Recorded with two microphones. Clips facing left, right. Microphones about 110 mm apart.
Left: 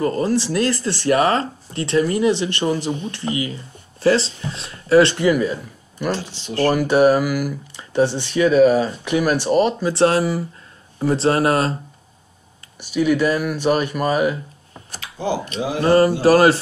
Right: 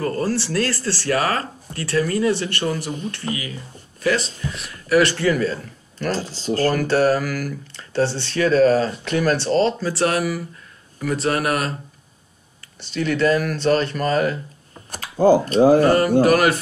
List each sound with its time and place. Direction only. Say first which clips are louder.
0.0 s speech: left 3 dB; 20° left (ahead or behind)
6.1 s speech: right 4 dB; 35° right (ahead or behind)
6.7 s speech: left 5 dB; 10° left (ahead or behind); by 11.7 s 30° left (ahead or behind)
12.8 s speech: left 2 dB; 10° left (ahead or behind)
14.9 s speech: right 9 dB; 45° right (ahead or behind)
15.8 s speech: left 2 dB; 25° left (ahead or behind)
16.2 s mantra: left 2 dB; 30° left (ahead or behind)